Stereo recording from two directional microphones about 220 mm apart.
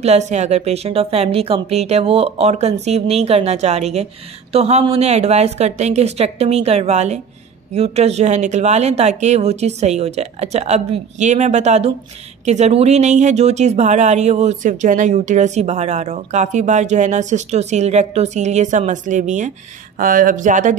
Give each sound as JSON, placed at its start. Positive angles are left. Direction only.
{"t": 0.0, "sound": "a woman's voice", "side_deg": -30}